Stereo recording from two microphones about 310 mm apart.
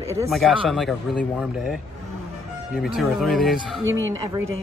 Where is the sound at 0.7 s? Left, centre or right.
Centre.